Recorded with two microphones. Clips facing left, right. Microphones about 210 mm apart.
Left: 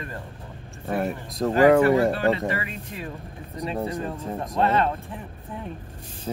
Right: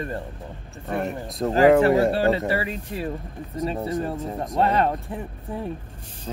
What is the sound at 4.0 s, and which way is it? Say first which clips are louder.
Speech: right 2 dB; 45° right (ahead or behind).